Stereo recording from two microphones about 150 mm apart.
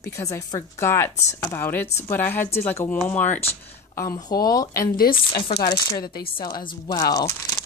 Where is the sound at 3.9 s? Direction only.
25° left (ahead or behind).